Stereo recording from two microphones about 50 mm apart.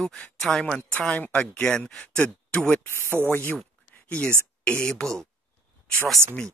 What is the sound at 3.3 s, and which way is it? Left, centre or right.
Speech, left.